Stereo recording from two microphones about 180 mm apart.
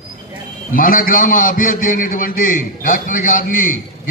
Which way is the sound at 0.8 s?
50° left (ahead or behind).